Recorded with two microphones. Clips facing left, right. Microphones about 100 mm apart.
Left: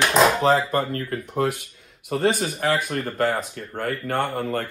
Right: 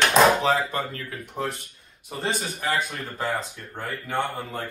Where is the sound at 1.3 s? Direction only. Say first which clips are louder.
Left 6 dB; 70° left (ahead or behind).